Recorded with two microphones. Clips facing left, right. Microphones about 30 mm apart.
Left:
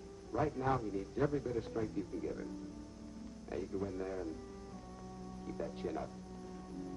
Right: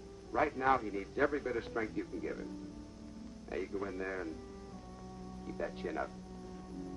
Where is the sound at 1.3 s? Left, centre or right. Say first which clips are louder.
Right 1 dB; right.